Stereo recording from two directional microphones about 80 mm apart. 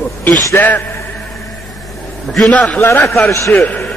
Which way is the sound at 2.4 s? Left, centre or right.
Centre.